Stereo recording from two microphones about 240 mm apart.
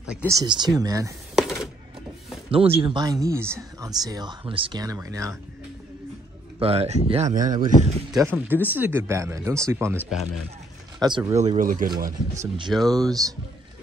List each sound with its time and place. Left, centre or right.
0.1 s speech: centre
1.3 s a sound: centre
2.5 s speech: right
6.6 s speech: right
8.1 s speech: centre
11.0 s speech: centre; by 11.9 s right
12.4 s speech: centre